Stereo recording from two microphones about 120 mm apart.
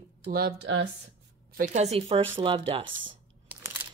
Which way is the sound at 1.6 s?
80° right.